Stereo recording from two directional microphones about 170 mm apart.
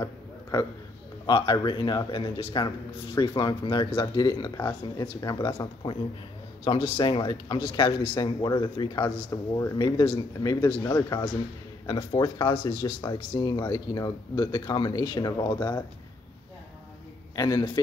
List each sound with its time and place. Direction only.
0.0 s a sound: 20° left (ahead or behind)
1.2 s speech: 25° left (ahead or behind)
17.4 s speech: 25° left (ahead or behind)